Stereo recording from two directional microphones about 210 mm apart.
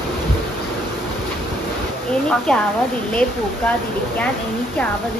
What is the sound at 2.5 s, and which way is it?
Speech, centre (ahead or behind).